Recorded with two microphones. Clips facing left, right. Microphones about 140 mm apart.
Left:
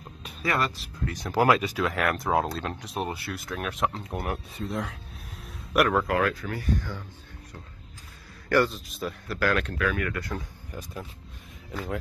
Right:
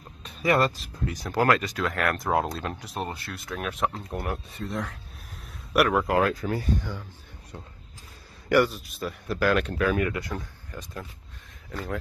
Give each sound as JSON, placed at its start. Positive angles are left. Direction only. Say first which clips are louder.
{"t": 1.2, "sound": "speech", "louder": "left 1 dB", "side_deg": 5}
{"t": 5.9, "sound": "speech", "louder": "right 2 dB", "side_deg": -25}
{"t": 8.5, "sound": "speech", "louder": "right 2 dB", "side_deg": -10}
{"t": 9.3, "sound": "speech", "louder": "right 3 dB", "side_deg": -15}
{"t": 9.8, "sound": "speech", "louder": "right 3 dB", "side_deg": -25}
{"t": 10.7, "sound": "speech", "louder": "left 1 dB", "side_deg": 10}